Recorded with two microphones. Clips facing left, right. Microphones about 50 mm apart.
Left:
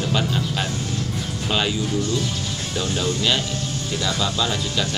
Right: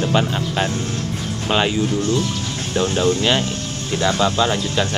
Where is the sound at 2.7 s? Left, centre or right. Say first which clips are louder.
Right 7 dB; right.